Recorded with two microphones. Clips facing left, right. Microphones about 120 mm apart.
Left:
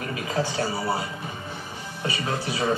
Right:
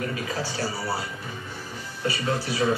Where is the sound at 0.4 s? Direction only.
20° left (ahead or behind).